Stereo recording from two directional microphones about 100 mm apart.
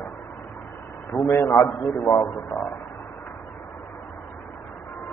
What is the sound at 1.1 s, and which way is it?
A man's voice, 30° left (ahead or behind).